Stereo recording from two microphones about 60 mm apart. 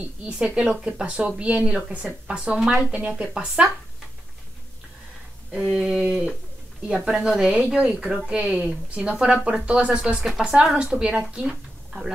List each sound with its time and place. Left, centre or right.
0.2 s speech: centre
2.6 s speech: centre
2.9 s speech: right
5.7 s speech: centre